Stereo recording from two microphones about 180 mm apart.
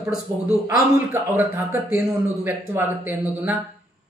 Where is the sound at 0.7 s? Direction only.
15° right (ahead or behind).